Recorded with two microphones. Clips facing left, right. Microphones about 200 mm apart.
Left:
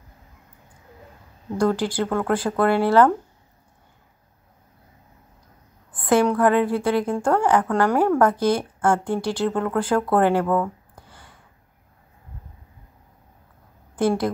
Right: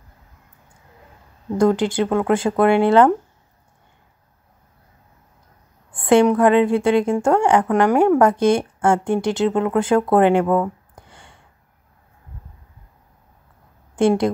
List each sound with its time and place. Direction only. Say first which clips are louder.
1.6 s a woman's voice: right 4 dB; 20° right (ahead or behind)
5.9 s a woman's voice: right 5 dB; 25° right (ahead or behind)
13.9 s a woman's voice: right 4 dB; 25° right (ahead or behind)